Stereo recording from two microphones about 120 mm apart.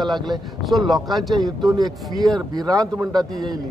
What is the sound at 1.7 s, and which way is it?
Speech, 35° right (ahead or behind).